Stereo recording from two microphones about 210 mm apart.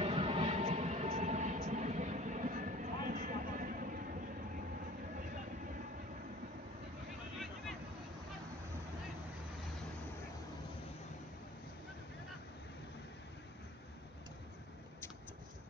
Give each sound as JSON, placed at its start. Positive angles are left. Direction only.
{"t": 0.0, "sound": "vehicle", "side_deg": -30}